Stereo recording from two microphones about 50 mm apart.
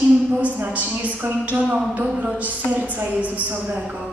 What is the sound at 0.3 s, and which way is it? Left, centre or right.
A woman's voice, right.